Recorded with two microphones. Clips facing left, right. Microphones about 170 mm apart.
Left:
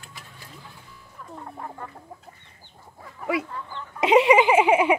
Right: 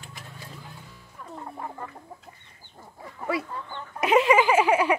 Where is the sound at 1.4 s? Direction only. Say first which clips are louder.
Right 1 dB; 5° right (ahead or behind).